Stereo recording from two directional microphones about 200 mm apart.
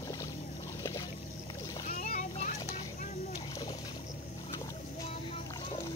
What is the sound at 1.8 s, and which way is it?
Splash, 45° left (ahead or behind).